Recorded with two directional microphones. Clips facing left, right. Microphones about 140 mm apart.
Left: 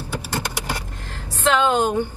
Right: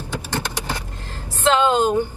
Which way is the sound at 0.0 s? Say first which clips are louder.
Even; 10° left (ahead or behind).